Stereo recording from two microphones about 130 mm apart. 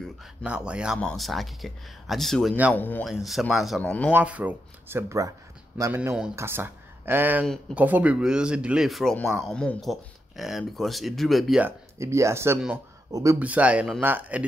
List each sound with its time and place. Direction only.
0.4 s speech: 10° right (ahead or behind)
0.9 s speech: 5° left (ahead or behind)
2.7 s speech: 15° left (ahead or behind)
3.1 s speech: centre (ahead or behind)
3.8 s speech: 10° left (ahead or behind)
4.1 s speech: 10° right (ahead or behind)
5.7 s speech: 10° right (ahead or behind)
9.1 s speech: 20° left (ahead or behind)
9.4 s speech: 5° left (ahead or behind)
11.6 s speech: 20° right (ahead or behind)
13.4 s speech: 10° right (ahead or behind)